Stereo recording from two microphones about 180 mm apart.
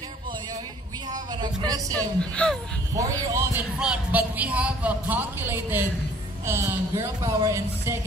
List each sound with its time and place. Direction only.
1.1 s a sound: 20° right (ahead or behind)
2.0 s a woman's voice: 5° left (ahead or behind)
3.0 s a man's voice: 15° right (ahead or behind)